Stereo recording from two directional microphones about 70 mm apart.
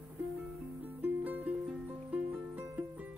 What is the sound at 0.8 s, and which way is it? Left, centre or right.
Music, right.